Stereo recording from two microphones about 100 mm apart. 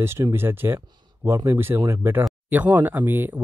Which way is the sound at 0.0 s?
25° right (ahead or behind).